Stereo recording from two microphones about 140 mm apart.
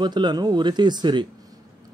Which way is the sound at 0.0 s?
30° right (ahead or behind).